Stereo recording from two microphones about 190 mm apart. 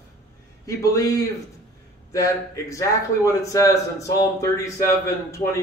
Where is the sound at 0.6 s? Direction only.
15° left (ahead or behind).